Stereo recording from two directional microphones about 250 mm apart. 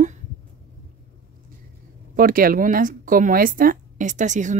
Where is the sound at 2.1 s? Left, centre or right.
Right.